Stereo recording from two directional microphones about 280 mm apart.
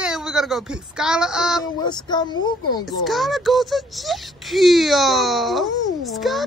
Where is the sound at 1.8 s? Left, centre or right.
Centre.